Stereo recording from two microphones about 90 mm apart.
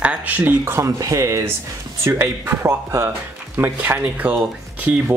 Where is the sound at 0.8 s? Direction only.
40° right (ahead or behind).